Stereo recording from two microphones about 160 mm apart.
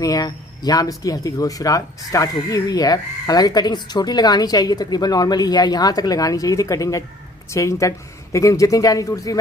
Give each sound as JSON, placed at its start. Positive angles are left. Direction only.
{"t": 0.0, "sound": "speech", "side_deg": 25}